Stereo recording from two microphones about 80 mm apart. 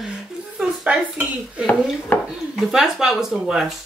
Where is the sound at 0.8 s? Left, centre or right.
Centre.